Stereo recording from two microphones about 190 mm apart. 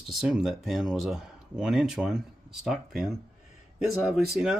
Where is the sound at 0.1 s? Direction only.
Centre (ahead or behind).